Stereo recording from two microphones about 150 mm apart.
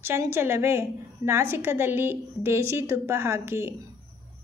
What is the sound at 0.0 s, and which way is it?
A woman's voice, 15° right (ahead or behind).